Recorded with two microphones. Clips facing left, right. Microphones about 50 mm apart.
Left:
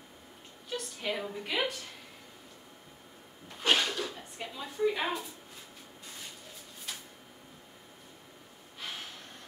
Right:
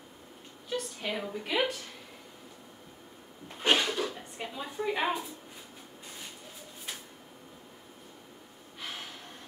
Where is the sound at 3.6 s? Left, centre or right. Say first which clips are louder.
Right 2 dB; centre.